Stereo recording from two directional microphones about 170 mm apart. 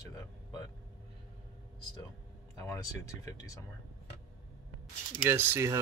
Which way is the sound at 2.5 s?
15° left (ahead or behind).